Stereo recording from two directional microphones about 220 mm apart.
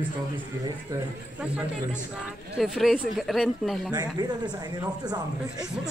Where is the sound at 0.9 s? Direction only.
5° right (ahead or behind).